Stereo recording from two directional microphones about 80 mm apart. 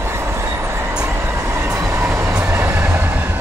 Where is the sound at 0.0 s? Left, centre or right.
Right.